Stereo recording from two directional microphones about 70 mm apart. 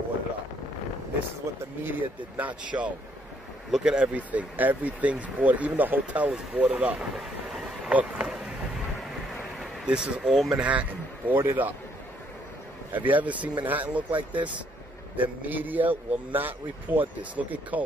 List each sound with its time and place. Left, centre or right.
1.5 s speech: right
1.8 s a man's voice: right
7.2 s train: centre
7.9 s speech: centre
9.8 s speech: centre
10.6 s a man's voice: right
12.9 s a man's voice: right